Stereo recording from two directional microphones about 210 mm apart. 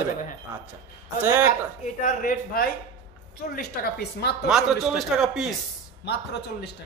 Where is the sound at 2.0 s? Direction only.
40° left (ahead or behind).